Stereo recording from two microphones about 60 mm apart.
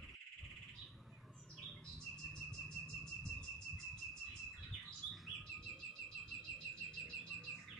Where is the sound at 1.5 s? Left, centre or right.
Centre.